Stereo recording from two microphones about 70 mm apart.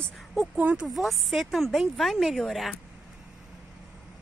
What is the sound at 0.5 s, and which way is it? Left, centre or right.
Speech, right.